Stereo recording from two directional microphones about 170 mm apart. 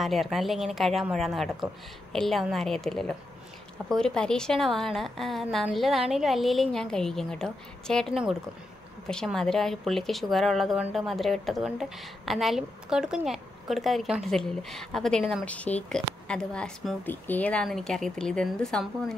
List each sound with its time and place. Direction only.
0.0 s a woman's voice: centre (ahead or behind)